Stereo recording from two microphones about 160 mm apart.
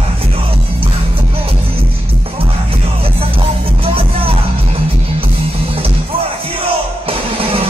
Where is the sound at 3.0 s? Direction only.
35° right (ahead or behind).